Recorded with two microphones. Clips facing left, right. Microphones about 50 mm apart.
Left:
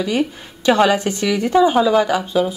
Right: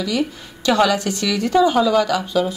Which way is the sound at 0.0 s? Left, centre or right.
Left.